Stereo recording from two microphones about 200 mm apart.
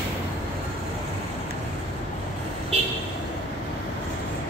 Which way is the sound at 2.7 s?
30° right (ahead or behind).